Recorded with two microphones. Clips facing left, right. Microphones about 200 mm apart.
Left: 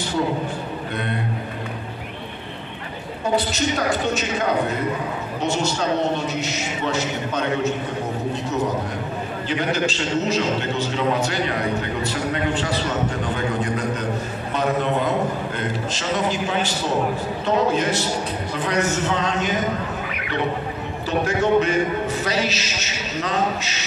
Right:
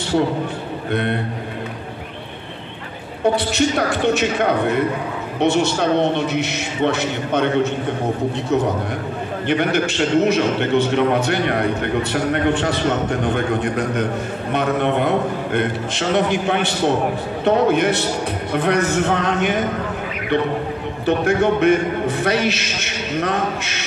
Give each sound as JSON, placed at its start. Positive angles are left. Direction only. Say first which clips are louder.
{"t": 3.3, "sound": "a man's voice", "louder": "right 4 dB", "side_deg": -60}
{"t": 9.5, "sound": "a man's voice", "louder": "right 4 dB", "side_deg": -60}
{"t": 21.0, "sound": "a man's voice", "louder": "right 5 dB", "side_deg": -60}